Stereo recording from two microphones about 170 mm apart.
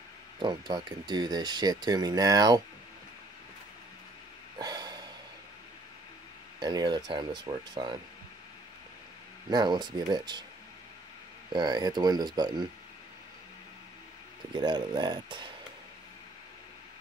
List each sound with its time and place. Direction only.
0.4 s speech: 25° right (ahead or behind)
4.6 s snort: 25° right (ahead or behind)
6.6 s speech: 25° right (ahead or behind)
9.5 s speech: 25° right (ahead or behind)
11.5 s speech: 25° right (ahead or behind)
14.5 s speech: 25° right (ahead or behind)